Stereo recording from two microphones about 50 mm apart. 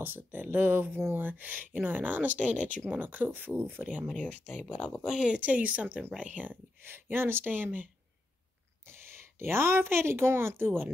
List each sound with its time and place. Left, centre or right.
0.0 s speech: right
4.1 s speech: left
5.0 s speech: centre
5.3 s speech: right
6.8 s speech: right
8.8 s a woman's voice: right